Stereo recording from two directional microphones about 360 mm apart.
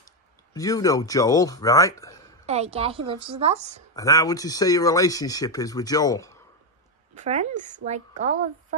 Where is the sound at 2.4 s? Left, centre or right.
Centre.